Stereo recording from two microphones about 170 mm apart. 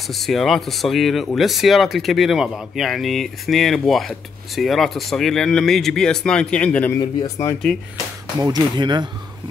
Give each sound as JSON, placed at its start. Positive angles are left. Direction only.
{"t": 0.1, "sound": "speech", "side_deg": 0}
{"t": 7.0, "sound": "speech", "side_deg": 25}
{"t": 8.4, "sound": "speech", "side_deg": -25}